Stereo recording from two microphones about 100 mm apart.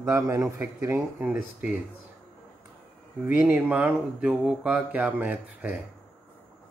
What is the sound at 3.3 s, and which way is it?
Mantra, 15° right (ahead or behind).